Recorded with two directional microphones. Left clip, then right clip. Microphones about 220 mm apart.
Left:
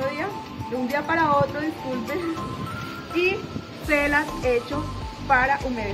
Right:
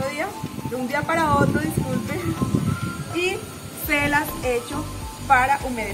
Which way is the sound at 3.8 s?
10° right (ahead or behind).